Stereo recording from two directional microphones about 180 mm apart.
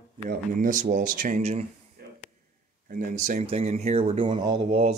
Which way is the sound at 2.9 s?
45° right (ahead or behind).